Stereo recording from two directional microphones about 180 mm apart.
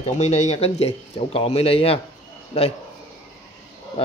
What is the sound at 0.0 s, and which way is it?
Speech, 40° left (ahead or behind).